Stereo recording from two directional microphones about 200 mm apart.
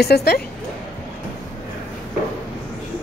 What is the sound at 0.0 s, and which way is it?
Speech, 55° left (ahead or behind).